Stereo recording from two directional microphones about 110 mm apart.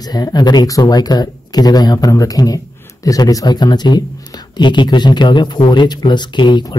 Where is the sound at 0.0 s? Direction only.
35° left (ahead or behind).